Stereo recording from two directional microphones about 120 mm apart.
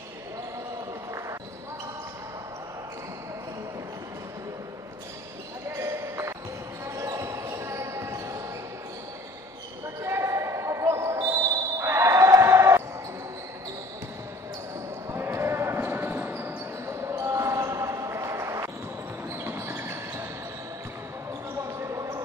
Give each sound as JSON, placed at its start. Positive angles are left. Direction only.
{"t": 5.7, "sound": "basketball bounce", "side_deg": -25}
{"t": 10.0, "sound": "basketball bounce", "side_deg": -25}
{"t": 15.0, "sound": "basketball bounce", "side_deg": -20}
{"t": 21.6, "sound": "basketball bounce", "side_deg": -25}